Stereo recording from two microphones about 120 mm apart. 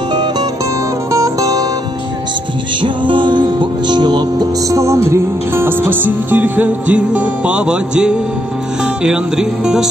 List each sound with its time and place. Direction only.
1.1 s music: 30° right (ahead or behind)
2.8 s music: 45° right (ahead or behind); by 9.8 s 5° right (ahead or behind)